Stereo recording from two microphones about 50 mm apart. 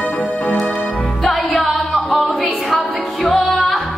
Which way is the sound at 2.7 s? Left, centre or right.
Centre.